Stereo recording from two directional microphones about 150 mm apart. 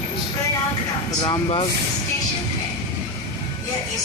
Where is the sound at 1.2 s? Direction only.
35° left (ahead or behind).